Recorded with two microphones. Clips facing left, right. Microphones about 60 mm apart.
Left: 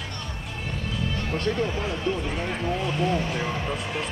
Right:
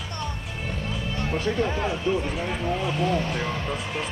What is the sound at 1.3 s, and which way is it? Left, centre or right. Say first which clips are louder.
Speech: right 1 dB; centre.